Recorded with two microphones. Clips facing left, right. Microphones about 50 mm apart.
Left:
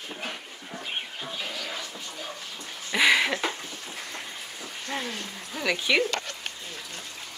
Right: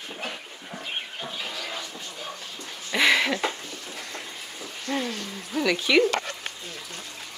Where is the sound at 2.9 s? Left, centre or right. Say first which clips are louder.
Even; centre.